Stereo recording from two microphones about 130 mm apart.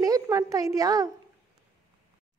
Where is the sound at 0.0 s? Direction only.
25° right (ahead or behind).